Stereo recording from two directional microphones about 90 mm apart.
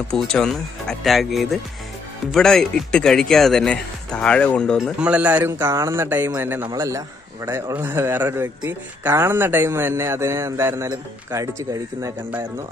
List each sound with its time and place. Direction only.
0.1 s speech: 10° left (ahead or behind)
5.0 s a man's voice: 15° right (ahead or behind)
5.4 s a man's voice: 30° right (ahead or behind)
6.7 s a man's voice: 35° right (ahead or behind)